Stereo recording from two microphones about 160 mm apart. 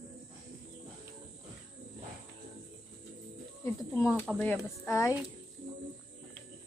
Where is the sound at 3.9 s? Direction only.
15° left (ahead or behind).